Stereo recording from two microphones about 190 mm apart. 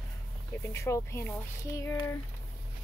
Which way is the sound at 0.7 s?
15° left (ahead or behind).